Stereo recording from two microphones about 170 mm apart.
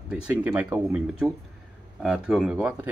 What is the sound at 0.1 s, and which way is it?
Speech, 10° right (ahead or behind).